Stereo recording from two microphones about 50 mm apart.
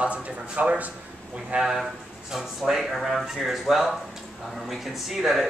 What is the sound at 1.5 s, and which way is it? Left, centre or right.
Speech, centre.